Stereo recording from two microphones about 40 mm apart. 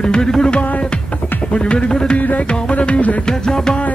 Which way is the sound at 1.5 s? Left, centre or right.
Left.